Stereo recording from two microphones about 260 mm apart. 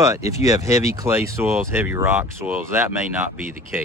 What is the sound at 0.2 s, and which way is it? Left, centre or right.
Speech, left.